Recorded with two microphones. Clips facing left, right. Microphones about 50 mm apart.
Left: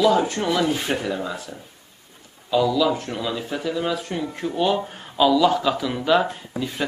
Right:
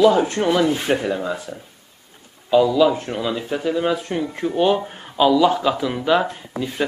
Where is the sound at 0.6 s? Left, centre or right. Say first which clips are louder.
Right 4 dB; centre.